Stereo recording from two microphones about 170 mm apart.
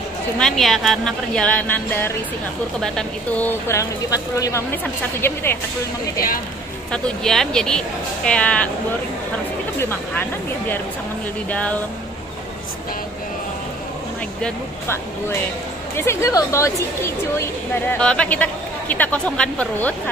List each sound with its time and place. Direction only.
0.4 s a woman's voice: centre (ahead or behind)
6.9 s speech: 5° left (ahead or behind)
9.8 s a woman's voice: 15° left (ahead or behind)
11.4 s a woman's voice: 10° left (ahead or behind)
14.4 s a woman's voice: 15° left (ahead or behind)